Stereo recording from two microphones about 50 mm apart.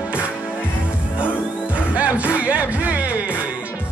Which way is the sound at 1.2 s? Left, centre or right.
Right.